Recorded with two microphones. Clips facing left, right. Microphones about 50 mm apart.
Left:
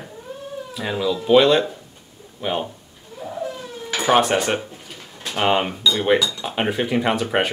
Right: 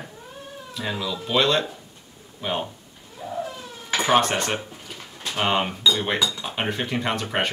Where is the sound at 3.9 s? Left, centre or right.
Centre.